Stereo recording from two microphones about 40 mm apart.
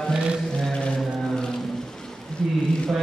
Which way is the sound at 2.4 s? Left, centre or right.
Centre.